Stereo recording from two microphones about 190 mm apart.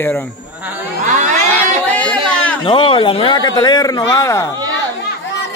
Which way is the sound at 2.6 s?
25° left (ahead or behind).